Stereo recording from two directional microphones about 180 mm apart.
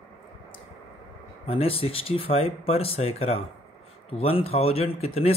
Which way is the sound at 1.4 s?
30° left (ahead or behind).